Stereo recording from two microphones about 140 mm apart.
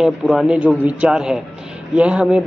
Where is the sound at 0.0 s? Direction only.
Centre (ahead or behind).